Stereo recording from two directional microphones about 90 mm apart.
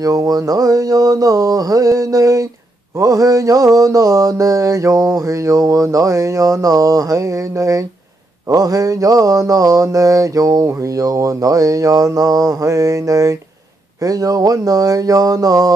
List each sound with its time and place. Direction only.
0.0 s mantra: 40° right (ahead or behind)